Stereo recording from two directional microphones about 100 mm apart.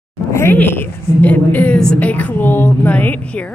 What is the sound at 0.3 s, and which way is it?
A woman's voice, 25° left (ahead or behind).